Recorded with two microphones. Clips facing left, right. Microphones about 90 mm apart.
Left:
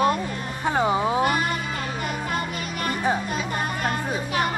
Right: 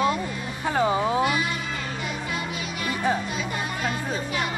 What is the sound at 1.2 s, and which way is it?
Music, 45° left (ahead or behind).